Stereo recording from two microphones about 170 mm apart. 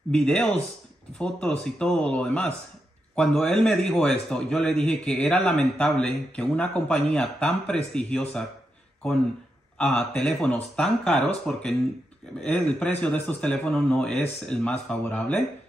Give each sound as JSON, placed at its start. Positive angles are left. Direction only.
{"t": 0.1, "sound": "a man's voice", "side_deg": 5}
{"t": 9.8, "sound": "a man's voice", "side_deg": 5}